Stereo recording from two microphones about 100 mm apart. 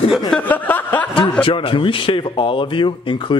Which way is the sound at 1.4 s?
60° left (ahead or behind).